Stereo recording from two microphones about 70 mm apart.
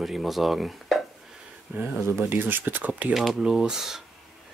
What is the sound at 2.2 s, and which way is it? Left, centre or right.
Speech, right.